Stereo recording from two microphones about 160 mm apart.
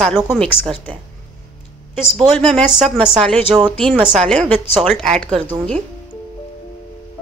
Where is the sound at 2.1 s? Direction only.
5° left (ahead or behind).